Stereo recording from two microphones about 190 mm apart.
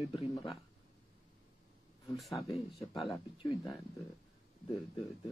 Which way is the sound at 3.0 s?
25° left (ahead or behind).